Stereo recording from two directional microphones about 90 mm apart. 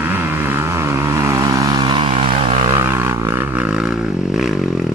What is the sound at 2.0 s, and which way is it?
Vehicle, 90° right.